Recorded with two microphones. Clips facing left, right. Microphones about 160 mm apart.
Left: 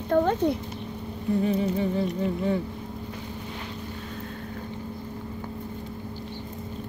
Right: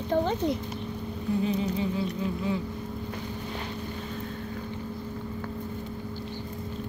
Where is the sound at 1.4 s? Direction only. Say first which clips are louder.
Left 3 dB; 55° left (ahead or behind).